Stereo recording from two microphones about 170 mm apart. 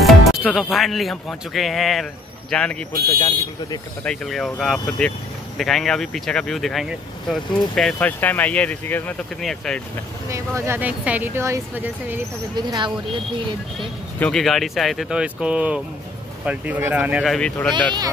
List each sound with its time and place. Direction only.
0.0 s speech: 5° right (ahead or behind)
3.2 s speech: 25° left (ahead or behind)
4.0 s speech: 5° left (ahead or behind)
10.3 s speech: 15° right (ahead or behind)
12.5 s speech: 25° right (ahead or behind)
13.7 s speech: centre (ahead or behind)